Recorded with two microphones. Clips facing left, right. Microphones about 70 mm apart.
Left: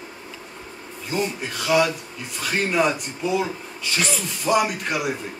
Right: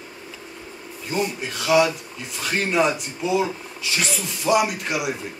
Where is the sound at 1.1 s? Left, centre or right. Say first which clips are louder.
Even; centre.